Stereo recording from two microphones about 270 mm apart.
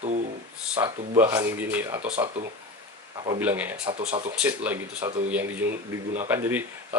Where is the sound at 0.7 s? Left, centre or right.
Centre.